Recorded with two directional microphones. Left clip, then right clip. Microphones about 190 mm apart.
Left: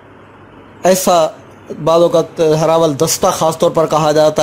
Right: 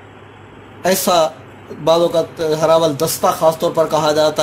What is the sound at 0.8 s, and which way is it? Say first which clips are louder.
Speech: left 3 dB; 30° left (ahead or behind).